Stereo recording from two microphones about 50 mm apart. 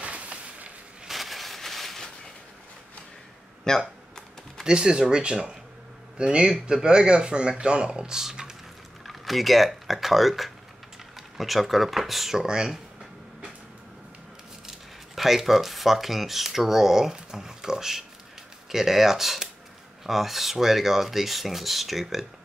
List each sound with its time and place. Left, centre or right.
0.0 s a sound: right
1.0 s a sound: centre
3.7 s speech: centre
4.6 s speech: centre
9.0 s typing: centre
11.1 s speech: centre
14.7 s speech: centre